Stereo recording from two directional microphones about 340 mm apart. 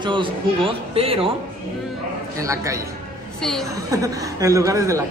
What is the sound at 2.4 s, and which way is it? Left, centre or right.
A man's voice, centre.